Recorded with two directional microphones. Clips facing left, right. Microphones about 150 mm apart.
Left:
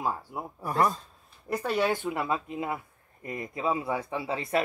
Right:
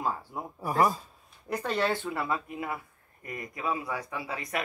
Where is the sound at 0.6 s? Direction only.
5° right (ahead or behind).